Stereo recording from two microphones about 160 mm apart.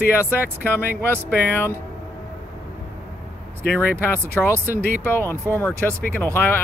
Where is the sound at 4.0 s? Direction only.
15° left (ahead or behind).